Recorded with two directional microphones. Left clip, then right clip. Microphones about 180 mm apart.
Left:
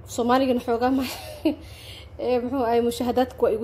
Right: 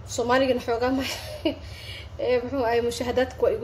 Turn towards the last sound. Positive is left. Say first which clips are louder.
# left 1 dB
turn(degrees=35)  # may be behind; listen again after turning